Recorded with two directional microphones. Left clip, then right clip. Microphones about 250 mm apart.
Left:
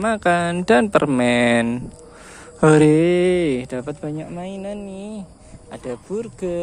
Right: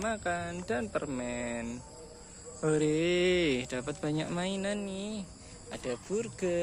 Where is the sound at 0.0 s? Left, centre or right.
Left; by 4.1 s centre.